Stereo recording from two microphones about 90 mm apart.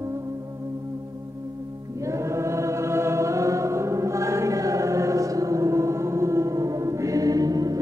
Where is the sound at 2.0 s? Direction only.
35° right (ahead or behind).